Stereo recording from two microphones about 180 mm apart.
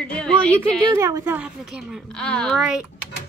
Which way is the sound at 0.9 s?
20° right (ahead or behind).